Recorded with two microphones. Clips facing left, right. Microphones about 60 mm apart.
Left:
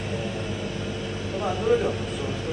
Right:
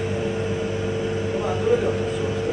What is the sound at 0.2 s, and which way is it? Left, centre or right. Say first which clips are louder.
Vehicle: right 6 dB; right.